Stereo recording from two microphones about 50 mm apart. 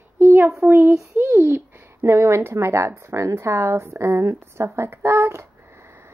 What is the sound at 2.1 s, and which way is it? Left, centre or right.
A woman's voice, right.